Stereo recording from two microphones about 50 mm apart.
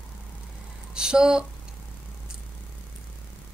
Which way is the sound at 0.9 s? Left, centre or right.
Centre.